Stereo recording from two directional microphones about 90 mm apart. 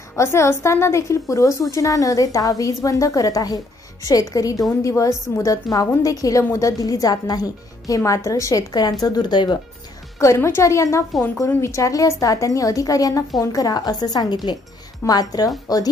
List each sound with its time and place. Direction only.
0.1 s a woman's voice: 30° left (ahead or behind); by 9.6 s 55° left (ahead or behind)
10.2 s a woman's voice: 30° left (ahead or behind)